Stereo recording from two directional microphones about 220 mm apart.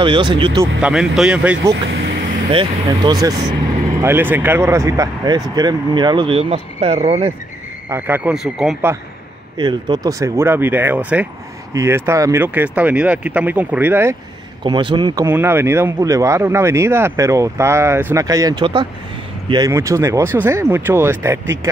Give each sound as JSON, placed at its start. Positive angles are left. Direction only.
{"t": 0.0, "sound": "speech", "side_deg": -20}
{"t": 0.8, "sound": "speech", "side_deg": -5}
{"t": 2.5, "sound": "speech", "side_deg": -25}
{"t": 7.9, "sound": "speech", "side_deg": -5}
{"t": 9.6, "sound": "speech", "side_deg": -20}
{"t": 14.6, "sound": "speech", "side_deg": -20}